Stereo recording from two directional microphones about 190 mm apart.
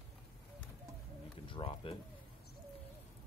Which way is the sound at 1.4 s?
25° left (ahead or behind).